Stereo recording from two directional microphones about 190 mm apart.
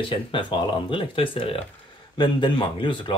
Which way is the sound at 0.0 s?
25° left (ahead or behind).